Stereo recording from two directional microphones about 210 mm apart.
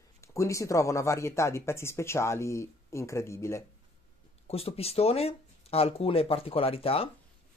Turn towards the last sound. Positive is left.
turn(degrees=25)  # may be behind; listen again after turning